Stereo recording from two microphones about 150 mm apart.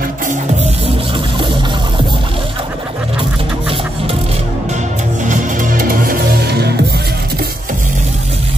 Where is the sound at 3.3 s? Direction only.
35° right (ahead or behind); by 7.4 s 90° right.